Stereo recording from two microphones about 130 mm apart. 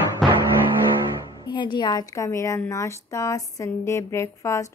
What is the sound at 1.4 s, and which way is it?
A woman's voice, 35° left (ahead or behind).